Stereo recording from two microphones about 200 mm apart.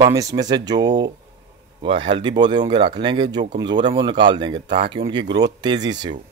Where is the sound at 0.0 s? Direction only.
15° right (ahead or behind).